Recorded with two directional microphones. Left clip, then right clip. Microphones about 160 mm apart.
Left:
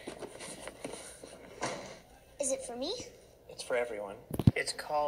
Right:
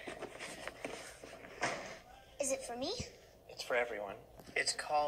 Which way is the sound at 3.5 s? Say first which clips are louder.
Left 2 dB; 45° left (ahead or behind).